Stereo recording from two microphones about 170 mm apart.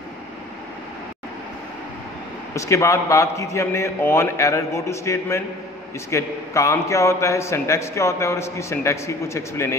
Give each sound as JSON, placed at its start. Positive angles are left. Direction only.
{"t": 2.5, "sound": "a man's voice", "side_deg": 20}